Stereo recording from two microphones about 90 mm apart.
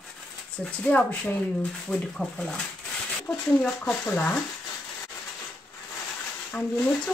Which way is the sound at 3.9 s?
15° left (ahead or behind).